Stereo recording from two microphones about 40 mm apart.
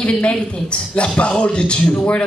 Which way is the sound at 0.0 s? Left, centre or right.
Left.